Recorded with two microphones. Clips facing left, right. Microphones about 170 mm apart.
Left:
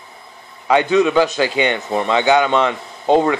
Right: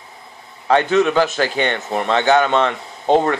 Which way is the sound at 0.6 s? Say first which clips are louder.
Left 1 dB; 15° left (ahead or behind).